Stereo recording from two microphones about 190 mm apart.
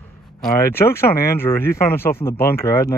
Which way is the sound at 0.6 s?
15° left (ahead or behind).